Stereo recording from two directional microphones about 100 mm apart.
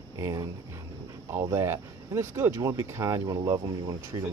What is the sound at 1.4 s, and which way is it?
Speech, 25° right (ahead or behind).